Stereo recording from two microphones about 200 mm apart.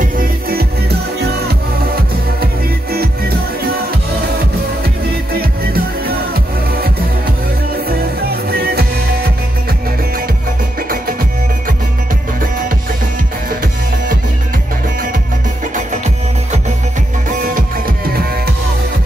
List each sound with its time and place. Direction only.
0.0 s music: 45° right (ahead or behind)
5.4 s music: 50° right (ahead or behind)
7.9 s music: 50° right (ahead or behind)
17.3 s music: 45° right (ahead or behind)